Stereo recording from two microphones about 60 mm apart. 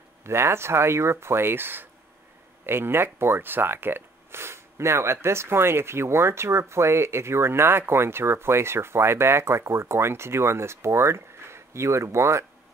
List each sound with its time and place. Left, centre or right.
0.2 s speech: right